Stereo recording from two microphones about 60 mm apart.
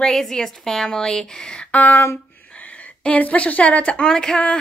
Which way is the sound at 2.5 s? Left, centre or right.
Left.